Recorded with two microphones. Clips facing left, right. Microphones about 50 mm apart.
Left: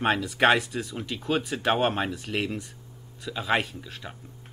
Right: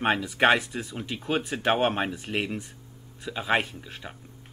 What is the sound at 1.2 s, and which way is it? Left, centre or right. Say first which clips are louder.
A man's voice: even; centre.